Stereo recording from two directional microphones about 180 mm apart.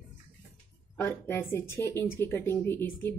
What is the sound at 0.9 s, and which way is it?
A woman's voice, 10° left (ahead or behind).